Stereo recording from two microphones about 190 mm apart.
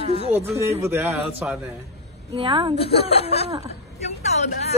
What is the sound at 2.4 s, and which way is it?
Speech, 25° right (ahead or behind).